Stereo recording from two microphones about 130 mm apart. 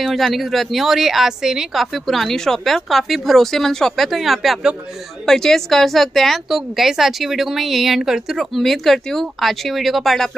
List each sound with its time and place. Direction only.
0.0 s a woman's voice: centre (ahead or behind)